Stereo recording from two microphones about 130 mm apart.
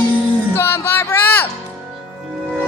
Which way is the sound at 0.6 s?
20° left (ahead or behind).